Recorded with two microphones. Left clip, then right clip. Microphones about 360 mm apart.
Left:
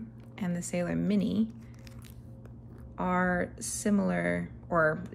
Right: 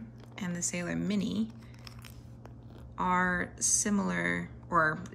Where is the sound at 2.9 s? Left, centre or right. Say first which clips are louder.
Right 1 dB; centre.